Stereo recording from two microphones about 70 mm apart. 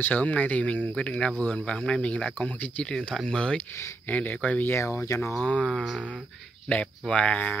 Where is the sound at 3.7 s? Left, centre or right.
Left.